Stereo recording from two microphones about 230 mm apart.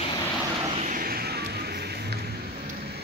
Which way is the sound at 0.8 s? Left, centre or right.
Right.